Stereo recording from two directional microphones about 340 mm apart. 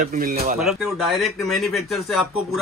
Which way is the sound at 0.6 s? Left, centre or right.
Centre.